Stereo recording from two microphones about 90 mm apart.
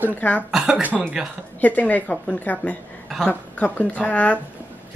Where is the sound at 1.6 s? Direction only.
20° left (ahead or behind).